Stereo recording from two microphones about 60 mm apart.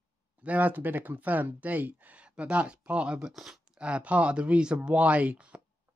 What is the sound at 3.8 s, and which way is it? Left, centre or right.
Speech, centre.